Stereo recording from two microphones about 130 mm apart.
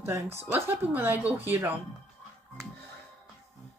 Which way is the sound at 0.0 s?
20° right (ahead or behind).